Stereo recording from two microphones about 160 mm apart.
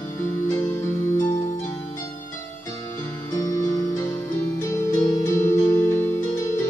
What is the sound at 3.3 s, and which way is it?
Music, 20° left (ahead or behind).